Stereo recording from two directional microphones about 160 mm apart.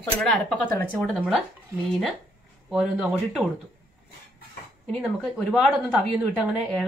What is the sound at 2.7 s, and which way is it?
Speech, 5° right (ahead or behind).